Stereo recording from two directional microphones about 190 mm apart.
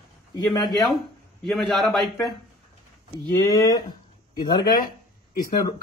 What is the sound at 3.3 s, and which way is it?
Speech, 20° left (ahead or behind).